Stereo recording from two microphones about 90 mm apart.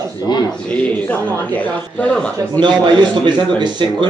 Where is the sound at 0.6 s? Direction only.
15° left (ahead or behind).